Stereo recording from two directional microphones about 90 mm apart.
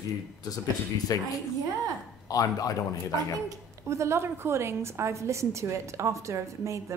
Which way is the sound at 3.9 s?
30° right (ahead or behind).